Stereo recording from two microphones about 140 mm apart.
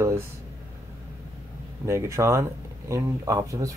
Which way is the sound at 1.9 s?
20° right (ahead or behind).